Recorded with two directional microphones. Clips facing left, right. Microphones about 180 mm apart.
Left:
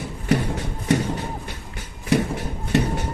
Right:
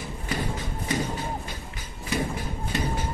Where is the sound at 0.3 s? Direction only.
70° left (ahead or behind).